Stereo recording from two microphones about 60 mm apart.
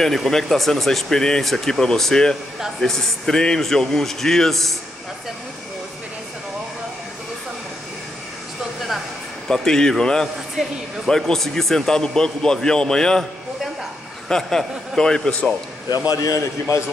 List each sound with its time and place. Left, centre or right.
0.0 s speech: centre
9.5 s a man's voice: centre
14.3 s a man's voice: centre
16.1 s a man's voice: left